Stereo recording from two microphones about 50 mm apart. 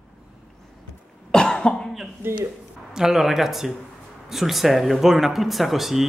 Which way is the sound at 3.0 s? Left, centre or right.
Centre.